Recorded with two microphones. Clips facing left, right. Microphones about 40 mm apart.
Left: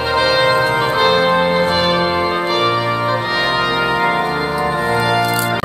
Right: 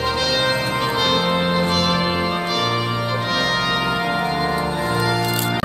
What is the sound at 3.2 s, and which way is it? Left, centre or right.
Brass instrument, left.